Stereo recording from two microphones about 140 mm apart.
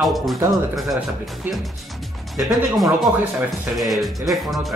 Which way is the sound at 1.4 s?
15° right (ahead or behind).